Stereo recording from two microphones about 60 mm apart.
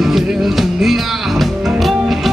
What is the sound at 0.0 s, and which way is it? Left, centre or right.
Music, centre.